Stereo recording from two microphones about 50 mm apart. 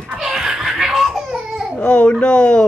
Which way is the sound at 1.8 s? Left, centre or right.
Left.